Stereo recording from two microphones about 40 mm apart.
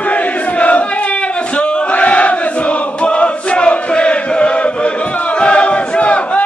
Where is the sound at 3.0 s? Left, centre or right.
Left.